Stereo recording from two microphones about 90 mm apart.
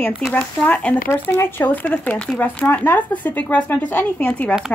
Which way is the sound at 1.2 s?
25° left (ahead or behind).